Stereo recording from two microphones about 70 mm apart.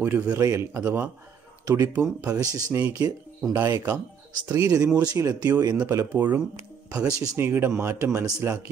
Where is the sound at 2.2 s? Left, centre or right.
Right.